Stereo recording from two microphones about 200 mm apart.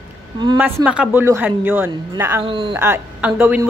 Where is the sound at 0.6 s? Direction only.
10° right (ahead or behind).